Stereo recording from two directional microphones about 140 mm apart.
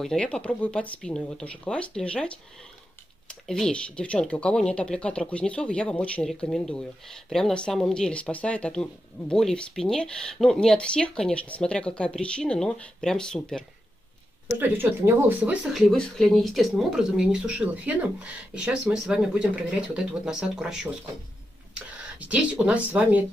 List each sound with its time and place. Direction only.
0.0 s speech: 5° left (ahead or behind)
14.6 s speech: 15° right (ahead or behind)